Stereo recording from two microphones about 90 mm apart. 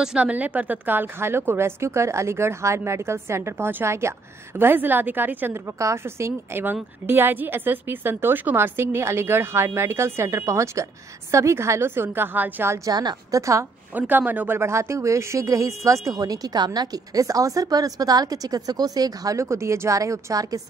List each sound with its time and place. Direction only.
0.0 s a woman's voice: 10° right (ahead or behind)
5.8 s a woman's voice: 35° right (ahead or behind)
12.7 s a woman's voice: 45° right (ahead or behind)
13.9 s a woman's voice: 20° right (ahead or behind); by 20.6 s 40° right (ahead or behind)